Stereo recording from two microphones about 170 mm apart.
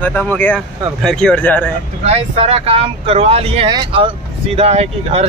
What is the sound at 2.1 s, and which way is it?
Speech, 35° right (ahead or behind).